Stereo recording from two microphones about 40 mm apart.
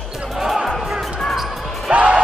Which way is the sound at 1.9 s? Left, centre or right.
Right.